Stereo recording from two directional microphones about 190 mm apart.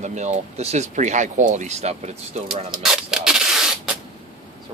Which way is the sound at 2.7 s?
5° right (ahead or behind).